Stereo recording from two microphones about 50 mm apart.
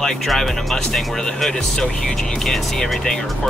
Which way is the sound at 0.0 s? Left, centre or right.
Centre.